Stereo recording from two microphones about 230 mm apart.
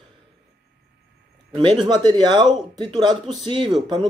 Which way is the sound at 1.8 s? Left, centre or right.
Centre.